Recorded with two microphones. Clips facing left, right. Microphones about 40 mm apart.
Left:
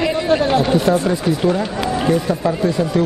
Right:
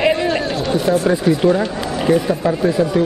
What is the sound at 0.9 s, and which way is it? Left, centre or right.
Speech, centre.